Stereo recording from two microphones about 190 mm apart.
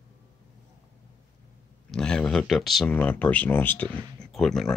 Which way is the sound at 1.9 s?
5° left (ahead or behind).